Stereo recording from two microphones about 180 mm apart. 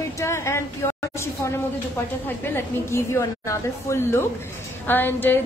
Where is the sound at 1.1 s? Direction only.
15° left (ahead or behind).